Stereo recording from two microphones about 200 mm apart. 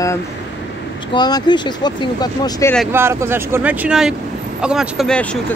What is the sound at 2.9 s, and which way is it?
Speech, 10° right (ahead or behind).